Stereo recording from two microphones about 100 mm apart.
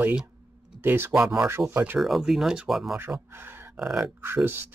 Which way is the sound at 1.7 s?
20° right (ahead or behind).